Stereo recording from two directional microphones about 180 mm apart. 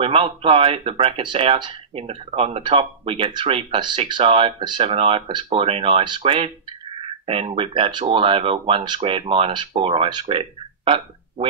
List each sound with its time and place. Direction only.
0.0 s speech: 30° right (ahead or behind)